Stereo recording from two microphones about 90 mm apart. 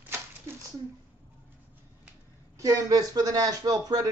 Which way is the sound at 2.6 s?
40° right (ahead or behind).